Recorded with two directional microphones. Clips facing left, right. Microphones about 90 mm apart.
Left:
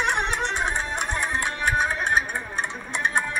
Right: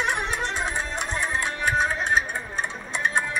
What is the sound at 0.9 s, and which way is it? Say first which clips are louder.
Music: left 1 dB; 55° left (ahead or behind).